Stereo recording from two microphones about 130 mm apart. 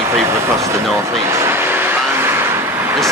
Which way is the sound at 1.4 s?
15° right (ahead or behind).